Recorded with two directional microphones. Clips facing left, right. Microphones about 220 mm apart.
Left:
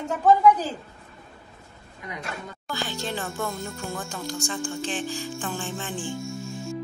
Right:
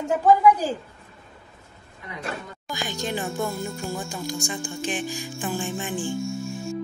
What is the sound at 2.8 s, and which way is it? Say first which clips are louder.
Speech: right 3 dB; 15° right (ahead or behind).